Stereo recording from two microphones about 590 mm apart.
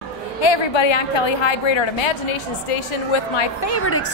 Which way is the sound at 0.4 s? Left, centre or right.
Left.